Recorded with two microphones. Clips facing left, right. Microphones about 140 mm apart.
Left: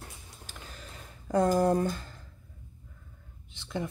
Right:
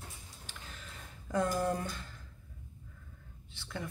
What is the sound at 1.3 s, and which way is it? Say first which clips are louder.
Speech: left 7 dB; 35° left (ahead or behind).